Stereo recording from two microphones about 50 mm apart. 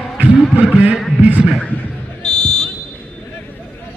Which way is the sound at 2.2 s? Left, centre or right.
Centre.